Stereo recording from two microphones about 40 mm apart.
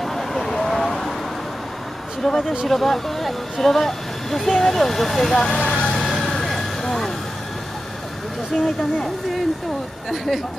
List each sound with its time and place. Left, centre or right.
0.0 s vehicle: centre
2.2 s a sound: centre
2.7 s speech: centre
5.8 s vehicle: centre
8.5 s speech: centre
10.1 s speech: centre